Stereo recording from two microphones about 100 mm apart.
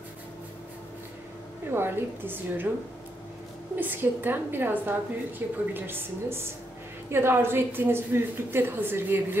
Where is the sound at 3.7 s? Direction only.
20° right (ahead or behind).